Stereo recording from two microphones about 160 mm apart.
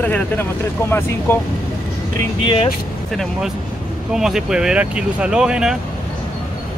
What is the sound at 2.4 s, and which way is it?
Speech, 30° left (ahead or behind).